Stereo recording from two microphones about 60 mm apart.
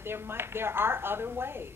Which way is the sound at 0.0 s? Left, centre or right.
Right.